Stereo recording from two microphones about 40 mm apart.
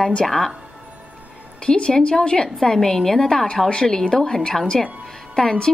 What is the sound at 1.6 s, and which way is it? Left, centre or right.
Speech, centre.